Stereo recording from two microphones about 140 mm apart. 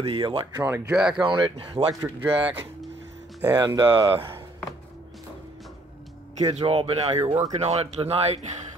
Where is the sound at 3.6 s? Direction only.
30° right (ahead or behind).